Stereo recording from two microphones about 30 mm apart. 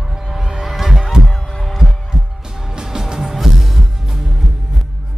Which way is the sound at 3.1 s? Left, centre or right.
Centre.